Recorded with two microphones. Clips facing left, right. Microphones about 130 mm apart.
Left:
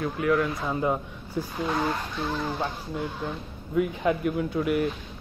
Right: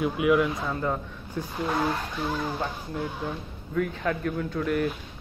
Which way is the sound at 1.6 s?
Centre (ahead or behind).